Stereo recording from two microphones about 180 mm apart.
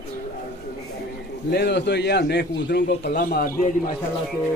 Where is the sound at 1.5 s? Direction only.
65° left (ahead or behind); by 3.6 s 50° left (ahead or behind).